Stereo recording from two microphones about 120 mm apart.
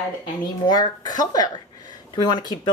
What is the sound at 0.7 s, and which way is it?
Speech, 35° left (ahead or behind).